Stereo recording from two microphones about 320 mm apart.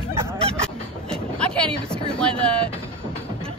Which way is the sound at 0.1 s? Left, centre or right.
Centre.